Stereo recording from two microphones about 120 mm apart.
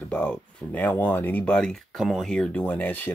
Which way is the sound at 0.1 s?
10° left (ahead or behind).